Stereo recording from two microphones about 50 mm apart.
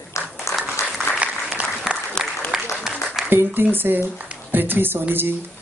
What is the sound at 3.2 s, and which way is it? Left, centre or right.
A woman's voice, right.